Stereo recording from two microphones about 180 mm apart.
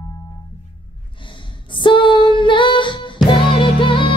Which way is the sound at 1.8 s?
25° left (ahead or behind).